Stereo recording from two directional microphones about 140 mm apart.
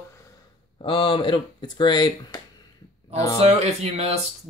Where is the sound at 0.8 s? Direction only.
40° left (ahead or behind).